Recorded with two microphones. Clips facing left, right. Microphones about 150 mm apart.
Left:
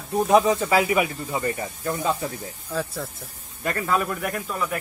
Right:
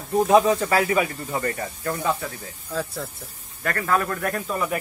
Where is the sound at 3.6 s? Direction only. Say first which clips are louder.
Right 1 dB; 15° left (ahead or behind).